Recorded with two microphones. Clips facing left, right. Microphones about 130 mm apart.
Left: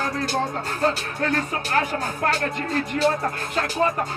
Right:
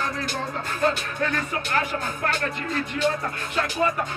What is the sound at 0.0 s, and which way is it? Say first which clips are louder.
Music: left 4 dB; 35° left (ahead or behind).